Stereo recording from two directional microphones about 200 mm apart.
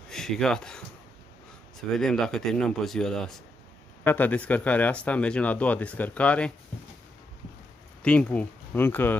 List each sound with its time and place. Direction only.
0.1 s a man's voice: centre (ahead or behind)
8.0 s speech: 5° left (ahead or behind)